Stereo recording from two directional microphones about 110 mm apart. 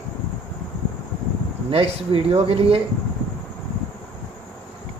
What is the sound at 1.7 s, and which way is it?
Speech, 60° right (ahead or behind).